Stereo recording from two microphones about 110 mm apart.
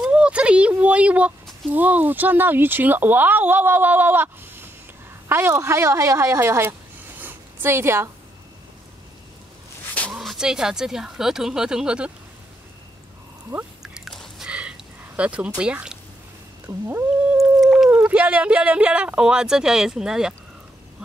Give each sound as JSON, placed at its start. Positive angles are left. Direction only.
{"t": 0.0, "sound": "a woman's voice", "side_deg": -10}
{"t": 7.2, "sound": "zipper", "side_deg": -20}
{"t": 10.1, "sound": "speech", "side_deg": -5}
{"t": 13.5, "sound": "speech", "side_deg": -15}
{"t": 13.8, "sound": "a sound", "side_deg": -5}
{"t": 14.5, "sound": "a sound", "side_deg": -10}
{"t": 16.6, "sound": "speech", "side_deg": -20}
{"t": 17.4, "sound": "howl", "side_deg": 0}
{"t": 17.9, "sound": "speech", "side_deg": -15}